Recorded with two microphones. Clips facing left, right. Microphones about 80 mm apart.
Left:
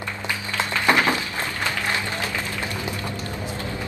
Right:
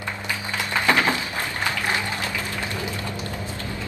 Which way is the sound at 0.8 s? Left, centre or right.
Left.